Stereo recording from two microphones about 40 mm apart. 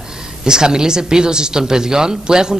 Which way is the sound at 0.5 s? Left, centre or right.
Centre.